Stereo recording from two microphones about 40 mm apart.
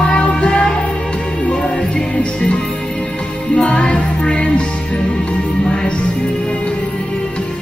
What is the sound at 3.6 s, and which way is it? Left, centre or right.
Music, left.